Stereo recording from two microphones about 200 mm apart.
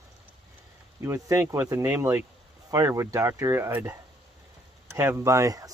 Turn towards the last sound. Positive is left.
turn(degrees=-15)  # may be behind; listen again after turning